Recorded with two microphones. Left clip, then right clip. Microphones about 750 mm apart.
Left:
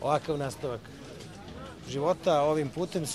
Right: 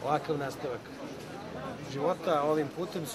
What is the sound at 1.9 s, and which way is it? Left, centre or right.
Speech, left.